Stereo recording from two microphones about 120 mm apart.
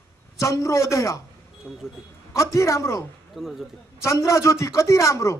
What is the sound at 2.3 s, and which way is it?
Speech, 25° left (ahead or behind).